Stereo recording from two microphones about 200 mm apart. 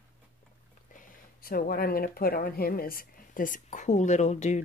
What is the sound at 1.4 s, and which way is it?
Speech, 50° left (ahead or behind).